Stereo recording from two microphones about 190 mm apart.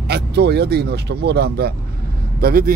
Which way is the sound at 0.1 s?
60° right (ahead or behind).